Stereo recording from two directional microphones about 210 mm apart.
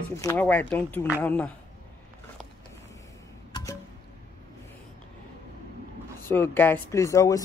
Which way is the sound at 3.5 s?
15° left (ahead or behind).